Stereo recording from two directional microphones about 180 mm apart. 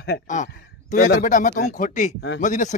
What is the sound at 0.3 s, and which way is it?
Speech, 45° left (ahead or behind).